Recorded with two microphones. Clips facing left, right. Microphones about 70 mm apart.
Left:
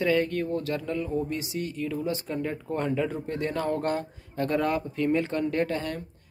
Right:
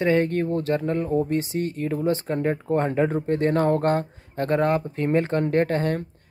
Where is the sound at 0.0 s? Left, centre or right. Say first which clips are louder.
Right 4 dB; right.